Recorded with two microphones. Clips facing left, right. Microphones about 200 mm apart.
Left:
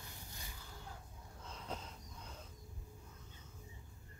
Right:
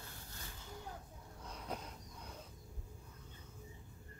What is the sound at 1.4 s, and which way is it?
Dog, 10° right (ahead or behind).